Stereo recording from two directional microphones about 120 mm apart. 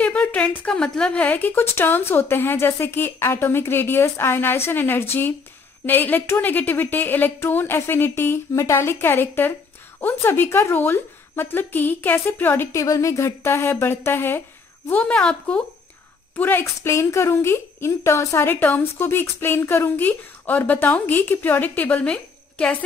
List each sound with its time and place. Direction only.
0.0 s a woman's voice: 10° left (ahead or behind)